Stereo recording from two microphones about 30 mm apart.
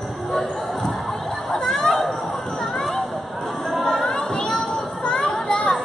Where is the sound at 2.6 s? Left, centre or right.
Centre.